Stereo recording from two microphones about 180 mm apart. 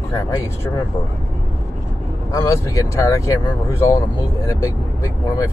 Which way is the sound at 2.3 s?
15° left (ahead or behind).